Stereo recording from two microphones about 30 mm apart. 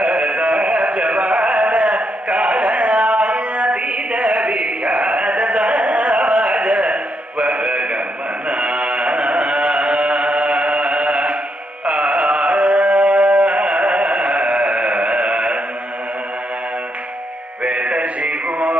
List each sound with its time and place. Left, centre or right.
0.0 s music: right
8.5 s a sound: right
11.8 s carnatic music: right
17.6 s music: right